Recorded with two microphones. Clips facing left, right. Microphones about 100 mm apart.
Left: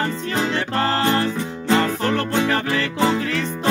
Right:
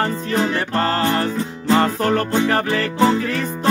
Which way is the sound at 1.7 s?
35° right (ahead or behind).